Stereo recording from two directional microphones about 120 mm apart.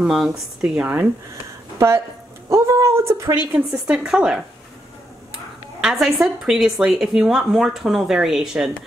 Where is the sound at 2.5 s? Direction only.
25° right (ahead or behind).